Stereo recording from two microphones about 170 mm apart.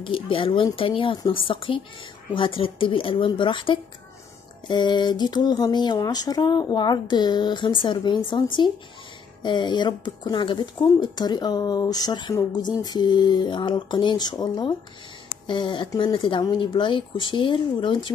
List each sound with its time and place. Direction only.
0.0 s a woman's voice: 30° left (ahead or behind)